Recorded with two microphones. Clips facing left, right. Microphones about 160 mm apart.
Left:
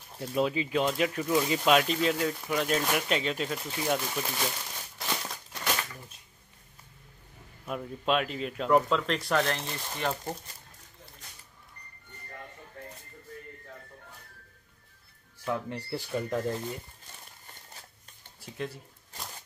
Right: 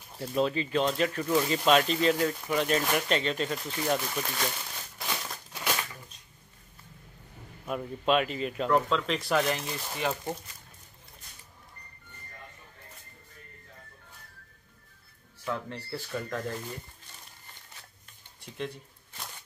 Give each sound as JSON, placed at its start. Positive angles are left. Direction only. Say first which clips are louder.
{"t": 0.2, "sound": "speech", "louder": "even", "side_deg": 5}
{"t": 7.6, "sound": "speech", "louder": "right 2 dB", "side_deg": 0}
{"t": 15.4, "sound": "speech", "louder": "left 2 dB", "side_deg": 15}
{"t": 18.4, "sound": "speech", "louder": "even", "side_deg": 5}